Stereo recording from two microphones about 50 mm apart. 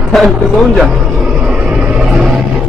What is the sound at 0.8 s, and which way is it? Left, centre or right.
Vehicle, right.